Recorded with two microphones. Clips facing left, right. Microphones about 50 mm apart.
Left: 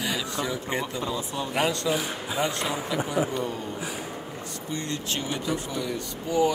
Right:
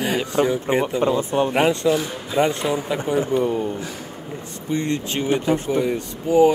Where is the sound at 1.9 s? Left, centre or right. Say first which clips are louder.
Right 5 dB; centre.